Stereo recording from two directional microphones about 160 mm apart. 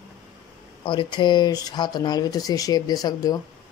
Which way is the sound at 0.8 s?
30° left (ahead or behind).